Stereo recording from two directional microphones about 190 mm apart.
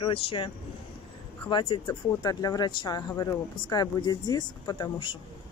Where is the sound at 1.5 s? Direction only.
25° left (ahead or behind).